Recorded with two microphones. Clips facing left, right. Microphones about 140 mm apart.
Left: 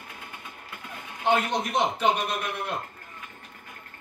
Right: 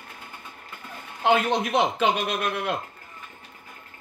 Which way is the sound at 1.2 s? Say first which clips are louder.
Right 3 dB; 90° right.